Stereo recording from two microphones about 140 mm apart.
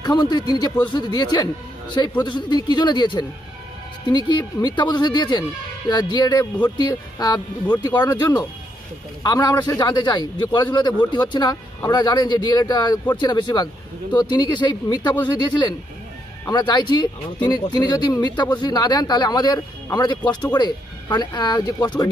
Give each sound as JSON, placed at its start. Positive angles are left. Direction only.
{"t": 0.0, "sound": "a man's voice", "side_deg": 30}
{"t": 16.4, "sound": "a man's voice", "side_deg": 30}